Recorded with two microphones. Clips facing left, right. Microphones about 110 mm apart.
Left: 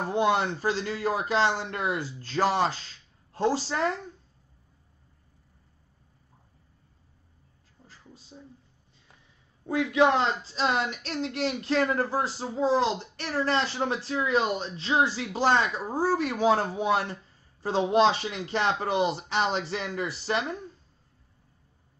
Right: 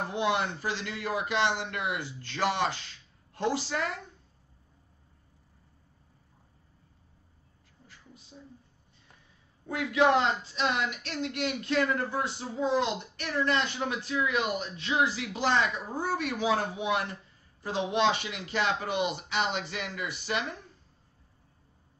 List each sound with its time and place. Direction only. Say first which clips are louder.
0.1 s speech: left 5 dB; 35° left (ahead or behind)
7.8 s a sound: left 2 dB; 35° left (ahead or behind)
9.7 s speech: left 2 dB; 25° left (ahead or behind)